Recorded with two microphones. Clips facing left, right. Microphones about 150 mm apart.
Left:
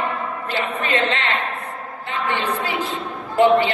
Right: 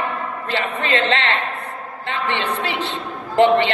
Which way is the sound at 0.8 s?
90° right.